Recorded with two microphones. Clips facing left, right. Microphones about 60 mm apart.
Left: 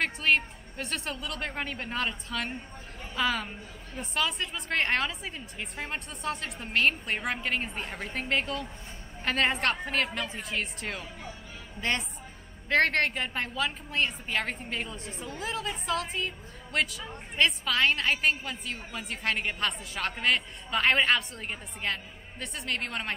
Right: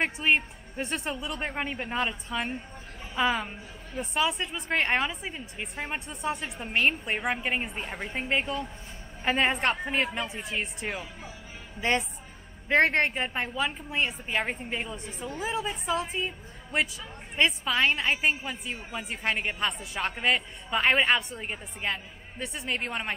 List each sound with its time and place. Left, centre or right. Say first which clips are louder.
0.0 s a woman's voice: right 1 dB; centre